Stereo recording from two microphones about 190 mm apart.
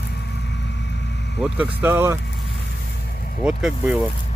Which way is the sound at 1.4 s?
10° right (ahead or behind).